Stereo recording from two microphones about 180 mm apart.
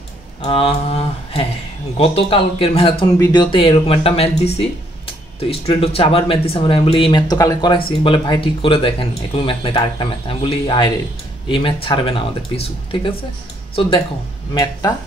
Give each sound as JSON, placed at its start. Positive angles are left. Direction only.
{"t": 0.4, "sound": "a sound", "side_deg": 30}
{"t": 2.0, "sound": "speech", "side_deg": 30}
{"t": 3.2, "sound": "speech", "side_deg": 20}